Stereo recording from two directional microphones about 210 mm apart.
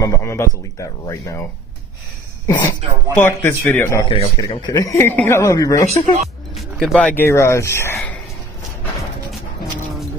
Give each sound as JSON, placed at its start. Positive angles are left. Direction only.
{"t": 0.0, "sound": "speech", "side_deg": 15}
{"t": 2.4, "sound": "speech", "side_deg": 15}
{"t": 5.9, "sound": "speech", "side_deg": -35}
{"t": 6.5, "sound": "speech", "side_deg": 0}